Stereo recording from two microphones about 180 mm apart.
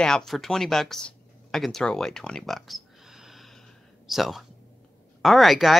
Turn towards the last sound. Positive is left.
turn(degrees=0)  # may be behind; listen again after turning